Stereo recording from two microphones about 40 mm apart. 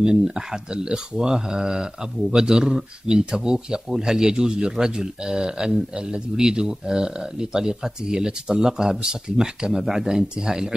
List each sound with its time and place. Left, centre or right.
0.0 s a man's voice: centre